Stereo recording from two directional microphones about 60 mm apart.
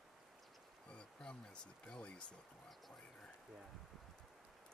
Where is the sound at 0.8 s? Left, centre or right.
Centre.